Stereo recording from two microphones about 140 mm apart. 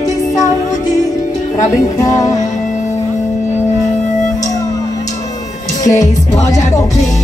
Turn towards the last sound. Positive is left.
turn(degrees=25)  # may be behind; listen again after turning